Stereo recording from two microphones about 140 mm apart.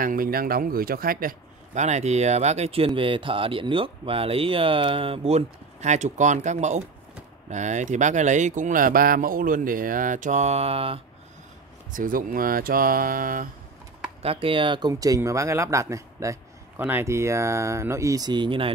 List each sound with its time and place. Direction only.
0.0 s speech: 85° right
1.7 s speech: 55° right (ahead or behind)
11.9 s speech: 75° right (ahead or behind)
14.2 s speech: 40° right (ahead or behind)